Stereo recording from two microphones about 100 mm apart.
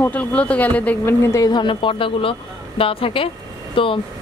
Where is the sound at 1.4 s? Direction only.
50° left (ahead or behind).